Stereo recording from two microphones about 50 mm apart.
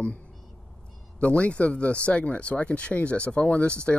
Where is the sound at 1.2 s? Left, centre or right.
Left.